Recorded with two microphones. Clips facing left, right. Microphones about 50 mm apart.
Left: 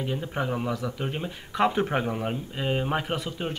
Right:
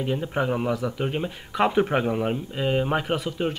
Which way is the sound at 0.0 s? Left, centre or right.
Centre.